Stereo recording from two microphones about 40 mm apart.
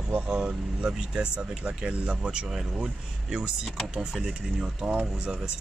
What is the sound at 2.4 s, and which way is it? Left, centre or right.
Speech, centre.